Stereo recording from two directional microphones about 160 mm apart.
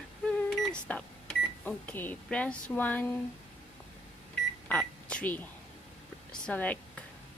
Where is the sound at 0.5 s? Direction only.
5° left (ahead or behind).